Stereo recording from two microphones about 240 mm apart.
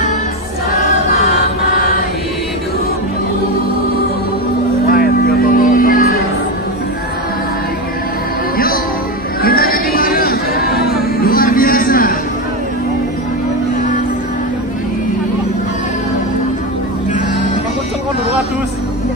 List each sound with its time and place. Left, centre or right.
4.8 s music: left
9.4 s a sound: left
11.1 s music: left